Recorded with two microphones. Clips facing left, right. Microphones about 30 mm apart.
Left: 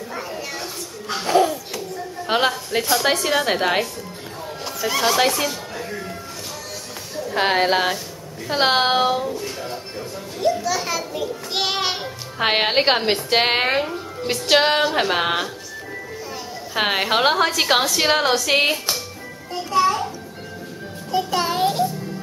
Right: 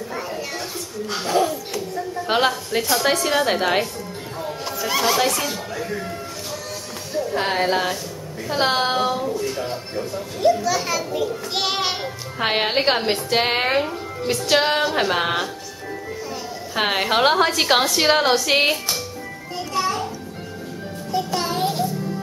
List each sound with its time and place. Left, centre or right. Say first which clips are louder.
0.1 s a sound: right 1 dB; centre
1.1 s a woman's voice: left 3 dB; centre
4.4 s a sound: right 1 dB; centre
5.9 s music: right 2 dB; centre
7.3 s a woman's voice: left 4 dB; left
9.2 s a child's voice: right 3 dB; centre
9.7 s a child's voice: right 3 dB; centre
12.4 s speech: left 2 dB; centre
16.7 s a child's voice: even; centre
19.5 s music: left 5 dB; centre
21.1 s music: left 2 dB; centre